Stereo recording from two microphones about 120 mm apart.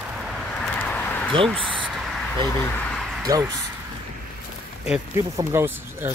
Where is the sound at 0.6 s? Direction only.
10° left (ahead or behind).